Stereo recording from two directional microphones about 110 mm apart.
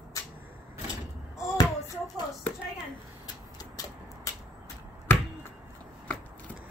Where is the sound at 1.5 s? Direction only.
35° left (ahead or behind).